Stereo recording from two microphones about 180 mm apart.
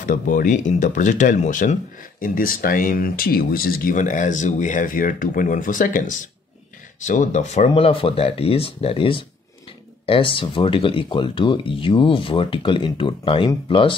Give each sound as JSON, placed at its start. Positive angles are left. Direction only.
{"t": 0.0, "sound": "speech", "side_deg": 45}